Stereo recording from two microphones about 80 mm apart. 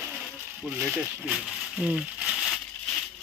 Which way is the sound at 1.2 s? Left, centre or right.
Centre.